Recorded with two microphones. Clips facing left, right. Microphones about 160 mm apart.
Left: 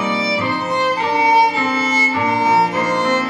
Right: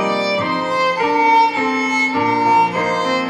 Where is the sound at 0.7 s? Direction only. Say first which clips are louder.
Right 1 dB; 10° right (ahead or behind).